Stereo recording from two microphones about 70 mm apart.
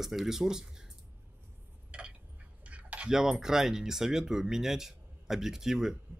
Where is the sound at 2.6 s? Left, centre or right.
Centre.